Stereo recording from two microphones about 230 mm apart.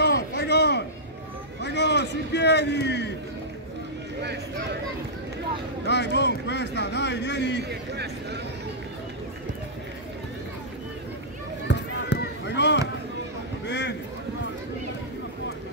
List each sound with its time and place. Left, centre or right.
0.0 s a sound: left
1.6 s a man's voice: left
5.9 s speech: left
7.9 s speech: right
11.6 s run: left
13.7 s a sound: left